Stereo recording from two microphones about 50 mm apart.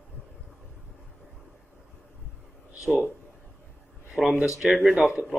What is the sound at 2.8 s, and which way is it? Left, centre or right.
Speech, right.